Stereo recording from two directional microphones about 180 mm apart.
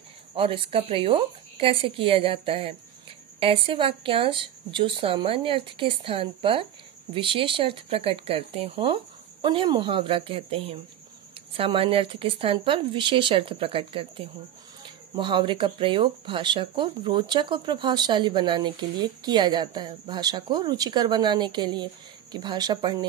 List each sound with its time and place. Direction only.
0.3 s speech: 30° right (ahead or behind)